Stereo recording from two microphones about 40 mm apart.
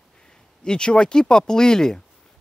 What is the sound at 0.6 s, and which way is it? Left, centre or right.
Speech, left.